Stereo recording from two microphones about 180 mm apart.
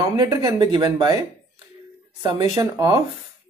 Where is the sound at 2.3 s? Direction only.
30° right (ahead or behind).